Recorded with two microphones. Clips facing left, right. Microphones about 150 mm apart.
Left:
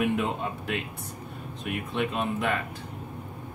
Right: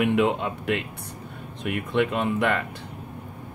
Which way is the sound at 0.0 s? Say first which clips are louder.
Right 5 dB; 75° right (ahead or behind).